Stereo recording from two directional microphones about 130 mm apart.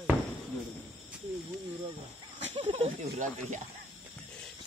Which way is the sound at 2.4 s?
55° right (ahead or behind).